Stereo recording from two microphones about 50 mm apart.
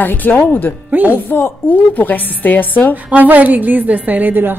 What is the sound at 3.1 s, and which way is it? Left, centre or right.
A woman's voice, right.